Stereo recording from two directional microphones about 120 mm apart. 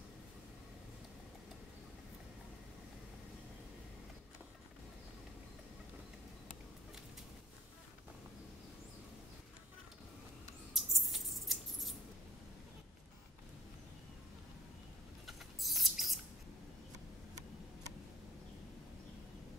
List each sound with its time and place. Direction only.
10.7 s scissors: centre (ahead or behind)
15.2 s rodents: centre (ahead or behind)